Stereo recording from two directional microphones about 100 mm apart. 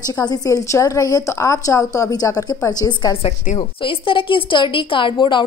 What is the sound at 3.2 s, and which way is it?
A woman's voice, 75° left (ahead or behind).